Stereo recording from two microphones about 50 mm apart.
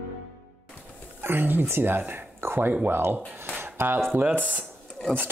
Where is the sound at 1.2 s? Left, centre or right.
Right.